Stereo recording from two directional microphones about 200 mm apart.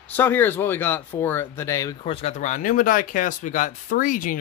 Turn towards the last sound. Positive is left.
turn(degrees=40)  # may be behind; listen again after turning